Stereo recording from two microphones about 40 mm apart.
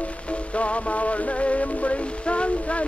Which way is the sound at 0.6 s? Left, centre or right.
Left.